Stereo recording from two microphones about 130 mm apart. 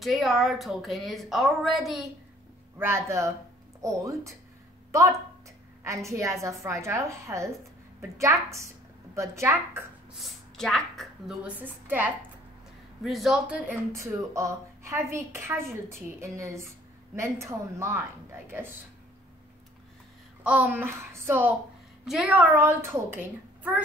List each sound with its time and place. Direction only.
0.0 s a woman's voice: centre (ahead or behind)
2.8 s speech: 20° right (ahead or behind)
5.9 s speech: 25° right (ahead or behind)
10.1 s speech: centre (ahead or behind)
11.4 s a woman's voice: 15° right (ahead or behind)
13.0 s a woman's voice: centre (ahead or behind)
13.7 s speech: 25° right (ahead or behind)
20.4 s a woman's voice: 10° right (ahead or behind)
22.0 s a woman's voice: 5° right (ahead or behind)